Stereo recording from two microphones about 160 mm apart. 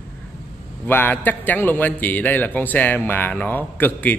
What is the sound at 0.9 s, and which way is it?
A man's voice, 10° left (ahead or behind).